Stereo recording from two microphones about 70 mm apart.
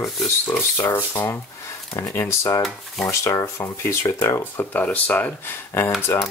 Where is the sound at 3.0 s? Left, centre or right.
Left.